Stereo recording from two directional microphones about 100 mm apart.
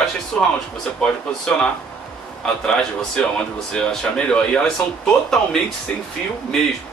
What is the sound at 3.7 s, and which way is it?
Speech, 5° left (ahead or behind).